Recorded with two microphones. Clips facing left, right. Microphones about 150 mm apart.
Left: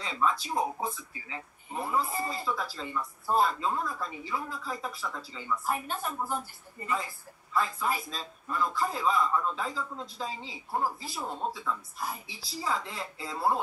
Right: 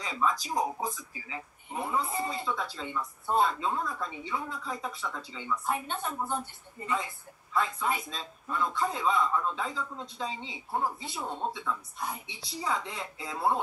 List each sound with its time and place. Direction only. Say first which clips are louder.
0.1 s speech: even; centre (ahead or behind)
7.5 s speech: even; centre (ahead or behind)
10.3 s a woman's voice: right 1 dB; 20° right (ahead or behind)
10.7 s speech: even; centre (ahead or behind)